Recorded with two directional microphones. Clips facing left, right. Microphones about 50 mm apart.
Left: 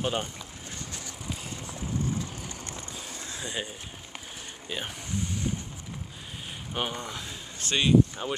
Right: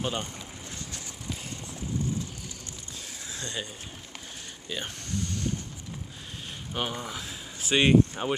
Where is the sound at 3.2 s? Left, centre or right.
Centre.